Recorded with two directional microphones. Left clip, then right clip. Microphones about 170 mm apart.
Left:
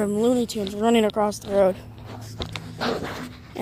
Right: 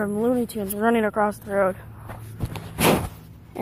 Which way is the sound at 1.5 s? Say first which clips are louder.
Left 4 dB; 40° left (ahead or behind).